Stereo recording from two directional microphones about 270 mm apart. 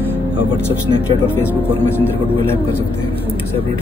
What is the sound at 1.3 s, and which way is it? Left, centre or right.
Speech, centre.